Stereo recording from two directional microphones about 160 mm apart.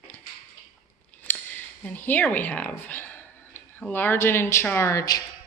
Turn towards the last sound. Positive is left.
turn(degrees=20)  # may be behind; listen again after turning